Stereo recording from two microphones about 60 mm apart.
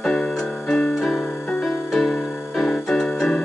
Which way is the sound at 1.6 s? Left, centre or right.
Centre.